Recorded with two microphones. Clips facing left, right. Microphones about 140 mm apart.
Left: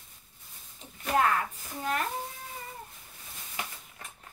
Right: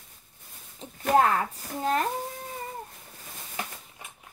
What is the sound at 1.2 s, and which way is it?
Speech, 35° right (ahead or behind).